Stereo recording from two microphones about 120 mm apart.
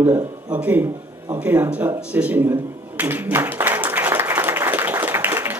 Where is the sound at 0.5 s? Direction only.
15° right (ahead or behind).